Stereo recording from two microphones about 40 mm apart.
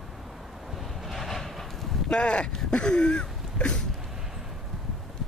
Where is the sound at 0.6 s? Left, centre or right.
Centre.